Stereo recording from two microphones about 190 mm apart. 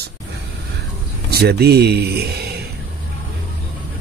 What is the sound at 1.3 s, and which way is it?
Speech, 60° right (ahead or behind).